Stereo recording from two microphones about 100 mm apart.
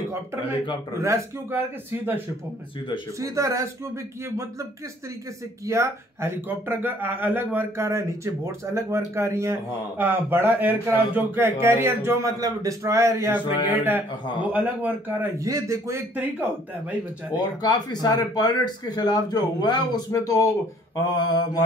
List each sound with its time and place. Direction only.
0.9 s a man's voice: 30° right (ahead or behind)
3.2 s a man's voice: 30° right (ahead or behind)
5.7 s a man's voice: 25° right (ahead or behind)
13.7 s a man's voice: 20° right (ahead or behind)
15.3 s a man's voice: 30° right (ahead or behind)
17.4 s speech: 40° left (ahead or behind)
20.1 s mantra: 35° left (ahead or behind)